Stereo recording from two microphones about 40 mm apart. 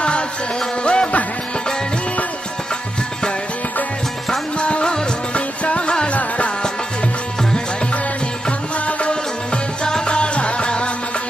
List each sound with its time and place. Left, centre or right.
0.6 s music: left
4.6 s music of bollywood: left
5.3 s music: left
8.5 s music: left
9.1 s music: centre